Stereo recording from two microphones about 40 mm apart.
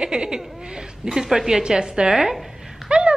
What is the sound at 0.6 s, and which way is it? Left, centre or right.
Speech, centre.